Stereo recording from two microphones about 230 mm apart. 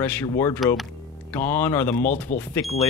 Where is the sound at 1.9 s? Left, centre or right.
Left.